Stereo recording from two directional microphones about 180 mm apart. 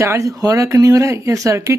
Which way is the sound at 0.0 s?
15° right (ahead or behind).